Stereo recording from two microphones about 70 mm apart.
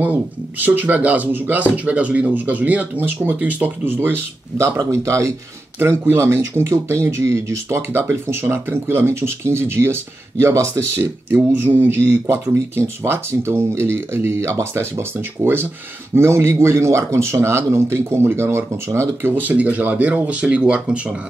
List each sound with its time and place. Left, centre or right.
0.0 s speech: right
4.7 s speech: right
5.8 s speech: right
11.2 s speech: right
12.4 s speech: right
19.3 s speech: right